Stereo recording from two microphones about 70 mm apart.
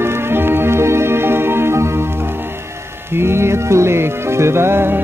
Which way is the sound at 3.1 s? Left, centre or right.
Right.